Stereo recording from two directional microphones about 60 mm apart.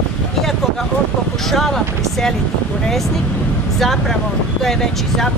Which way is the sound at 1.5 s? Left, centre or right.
Centre.